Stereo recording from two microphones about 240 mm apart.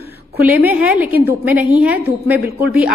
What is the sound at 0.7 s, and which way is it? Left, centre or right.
A woman's voice, centre.